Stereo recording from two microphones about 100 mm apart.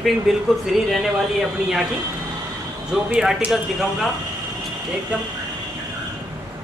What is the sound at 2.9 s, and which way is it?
A man's voice, 5° right (ahead or behind).